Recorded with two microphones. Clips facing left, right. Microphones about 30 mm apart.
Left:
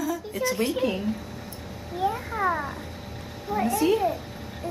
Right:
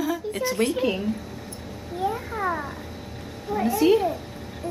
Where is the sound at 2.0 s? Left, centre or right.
Centre.